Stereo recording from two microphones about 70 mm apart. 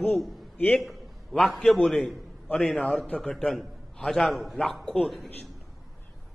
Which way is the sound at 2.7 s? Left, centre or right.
Centre.